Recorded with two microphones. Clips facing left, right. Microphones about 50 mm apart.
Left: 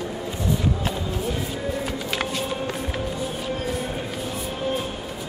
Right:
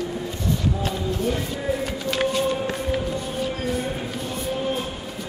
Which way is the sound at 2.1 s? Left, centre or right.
Centre.